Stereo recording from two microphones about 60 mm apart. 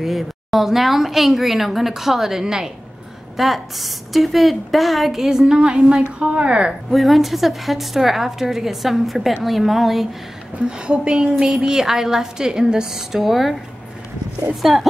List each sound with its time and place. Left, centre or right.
0.0 s a woman's voice: centre
6.9 s a woman's voice: centre
10.8 s a woman's voice: centre